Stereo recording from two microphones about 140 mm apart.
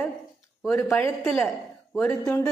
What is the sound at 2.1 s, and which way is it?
Speech, 20° left (ahead or behind).